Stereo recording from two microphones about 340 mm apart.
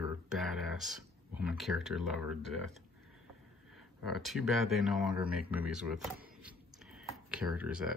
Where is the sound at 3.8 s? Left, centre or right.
Centre.